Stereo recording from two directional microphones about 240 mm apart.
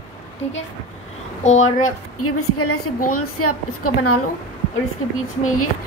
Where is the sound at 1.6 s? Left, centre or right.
Left.